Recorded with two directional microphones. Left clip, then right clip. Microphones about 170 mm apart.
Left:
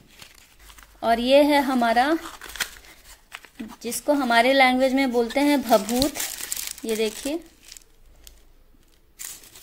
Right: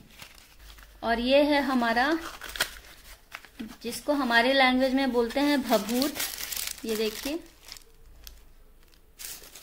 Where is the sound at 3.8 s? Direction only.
40° left (ahead or behind).